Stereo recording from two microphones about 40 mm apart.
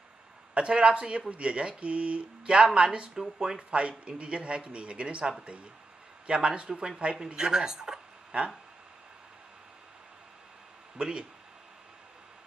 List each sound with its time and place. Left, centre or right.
0.6 s speech: right
11.0 s speech: right